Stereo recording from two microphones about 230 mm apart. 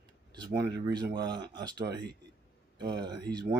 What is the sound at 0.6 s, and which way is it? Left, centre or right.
Speech, centre.